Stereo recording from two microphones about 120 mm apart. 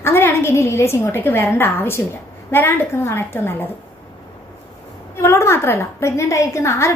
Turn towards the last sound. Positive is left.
turn(degrees=25)  # may be behind; listen again after turning